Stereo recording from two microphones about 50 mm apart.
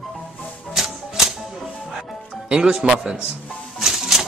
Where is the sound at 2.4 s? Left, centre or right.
Centre.